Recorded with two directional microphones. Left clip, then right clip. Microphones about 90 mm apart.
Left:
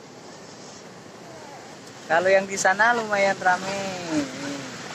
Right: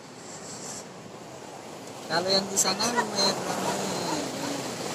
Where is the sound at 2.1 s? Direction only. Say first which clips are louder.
Left 7 dB; 25° right (ahead or behind).